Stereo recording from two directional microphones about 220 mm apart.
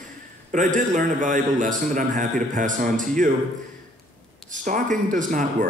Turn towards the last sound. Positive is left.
turn(degrees=-35)  # may be behind; listen again after turning